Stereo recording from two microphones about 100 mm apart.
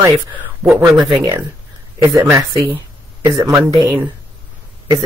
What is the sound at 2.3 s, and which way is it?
Speech, 35° right (ahead or behind).